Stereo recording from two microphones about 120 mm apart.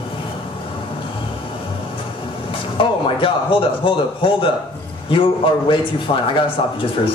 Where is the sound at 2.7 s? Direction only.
45° left (ahead or behind).